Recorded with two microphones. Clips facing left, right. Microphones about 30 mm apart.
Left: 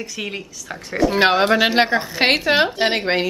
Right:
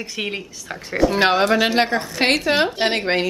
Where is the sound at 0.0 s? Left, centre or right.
Centre.